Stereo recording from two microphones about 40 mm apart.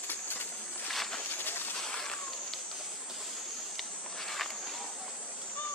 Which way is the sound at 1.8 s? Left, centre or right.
Centre.